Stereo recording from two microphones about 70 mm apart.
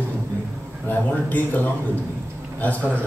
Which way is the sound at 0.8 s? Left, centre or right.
Left.